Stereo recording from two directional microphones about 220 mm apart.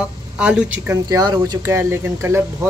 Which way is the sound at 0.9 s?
15° right (ahead or behind).